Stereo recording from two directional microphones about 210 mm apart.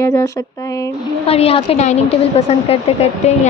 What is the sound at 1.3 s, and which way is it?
Speech, 30° left (ahead or behind).